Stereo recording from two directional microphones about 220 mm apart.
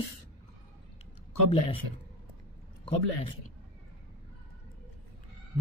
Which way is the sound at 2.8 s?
25° left (ahead or behind).